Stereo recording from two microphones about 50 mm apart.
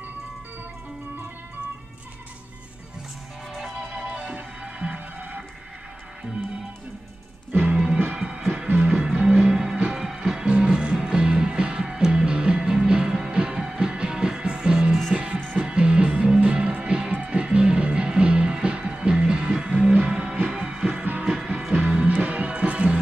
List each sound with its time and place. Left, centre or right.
3.5 s music: centre
4.2 s music: right
7.5 s music: right
10.5 s music: centre